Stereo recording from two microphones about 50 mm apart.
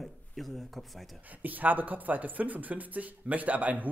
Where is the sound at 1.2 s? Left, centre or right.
Right.